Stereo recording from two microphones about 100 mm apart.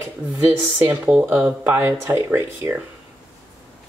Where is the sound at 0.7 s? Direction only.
20° right (ahead or behind).